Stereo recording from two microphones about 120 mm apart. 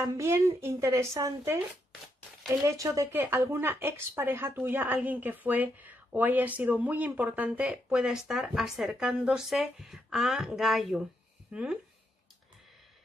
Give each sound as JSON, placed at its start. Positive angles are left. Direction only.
{"t": 0.2, "sound": "speech", "side_deg": -20}